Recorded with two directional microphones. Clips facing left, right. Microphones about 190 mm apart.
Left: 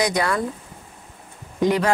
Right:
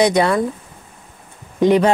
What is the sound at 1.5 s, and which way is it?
Speech, 25° right (ahead or behind).